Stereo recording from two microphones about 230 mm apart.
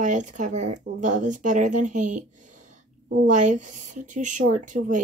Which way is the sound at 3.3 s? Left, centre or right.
Right.